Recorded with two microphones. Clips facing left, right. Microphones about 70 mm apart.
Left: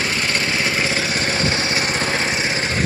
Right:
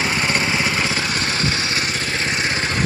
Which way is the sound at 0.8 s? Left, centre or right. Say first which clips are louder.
Left 1 dB; centre.